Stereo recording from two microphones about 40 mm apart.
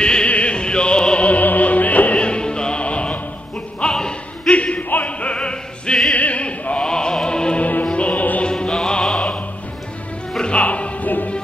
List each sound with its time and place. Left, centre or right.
0.0 s music: left
1.2 s music: left
2.1 s music: left
3.8 s a sound: left
5.0 s opera: left
6.1 s opera: left
6.9 s music: centre
7.9 s music: left
8.5 s music: left
10.4 s music: left